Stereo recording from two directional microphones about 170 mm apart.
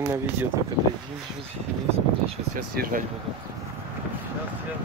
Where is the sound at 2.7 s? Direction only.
60° right (ahead or behind).